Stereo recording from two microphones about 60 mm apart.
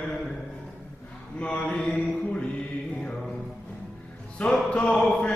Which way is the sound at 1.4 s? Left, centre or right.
Centre.